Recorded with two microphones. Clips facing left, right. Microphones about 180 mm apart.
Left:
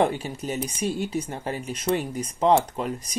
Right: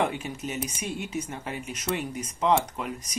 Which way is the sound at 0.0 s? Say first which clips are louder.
Left 4 dB; 35° left (ahead or behind).